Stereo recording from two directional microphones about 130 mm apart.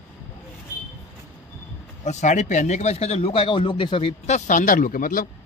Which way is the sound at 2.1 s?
65° left (ahead or behind).